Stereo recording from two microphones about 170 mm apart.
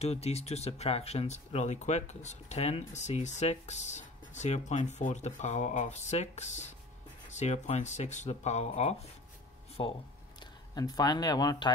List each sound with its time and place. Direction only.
0.0 s speech: 40° left (ahead or behind)